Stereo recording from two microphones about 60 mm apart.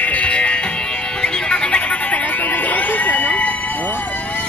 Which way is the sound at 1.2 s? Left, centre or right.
Centre.